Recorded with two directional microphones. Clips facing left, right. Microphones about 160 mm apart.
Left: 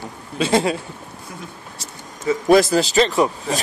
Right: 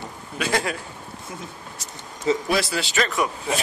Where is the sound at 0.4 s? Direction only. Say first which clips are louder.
Left 7 dB; 25° left (ahead or behind).